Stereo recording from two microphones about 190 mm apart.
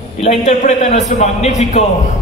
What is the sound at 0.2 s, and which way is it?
A man's voice, 35° left (ahead or behind).